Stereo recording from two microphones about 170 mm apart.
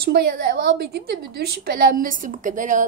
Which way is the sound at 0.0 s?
70° right (ahead or behind).